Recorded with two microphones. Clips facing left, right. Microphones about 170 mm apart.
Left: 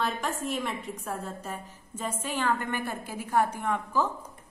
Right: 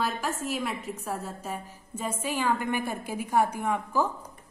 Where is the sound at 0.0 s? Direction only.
5° right (ahead or behind).